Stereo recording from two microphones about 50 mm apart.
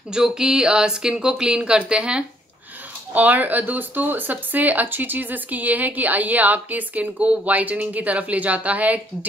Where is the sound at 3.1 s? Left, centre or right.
Right.